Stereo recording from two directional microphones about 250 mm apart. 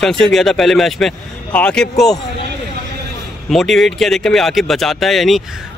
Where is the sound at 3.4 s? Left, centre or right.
Centre.